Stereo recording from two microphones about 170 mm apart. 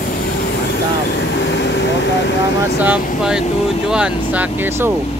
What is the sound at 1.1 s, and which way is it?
Vehicle, 90° left.